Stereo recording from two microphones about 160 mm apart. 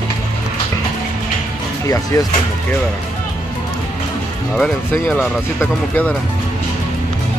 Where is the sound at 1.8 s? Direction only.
20° left (ahead or behind).